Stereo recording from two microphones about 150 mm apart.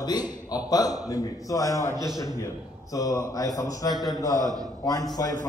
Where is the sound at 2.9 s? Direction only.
20° left (ahead or behind).